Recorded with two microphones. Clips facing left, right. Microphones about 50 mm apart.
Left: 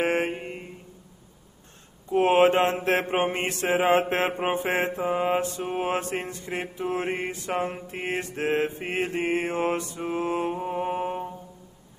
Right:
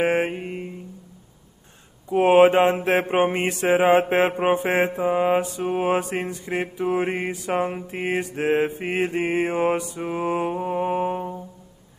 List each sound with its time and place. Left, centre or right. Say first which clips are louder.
0.0 s mantra: right 3 dB; centre
2.0 s mantra: right 4 dB; centre
3.6 s mantra: right 4 dB; centre
4.1 s mantra: right 5 dB; centre
5.0 s mantra: right 4 dB; centre
6.5 s mantra: right 5 dB; right
6.9 s mantra: right 4 dB; centre
8.7 s mantra: right 4 dB; right
9.4 s mantra: right 5 dB; centre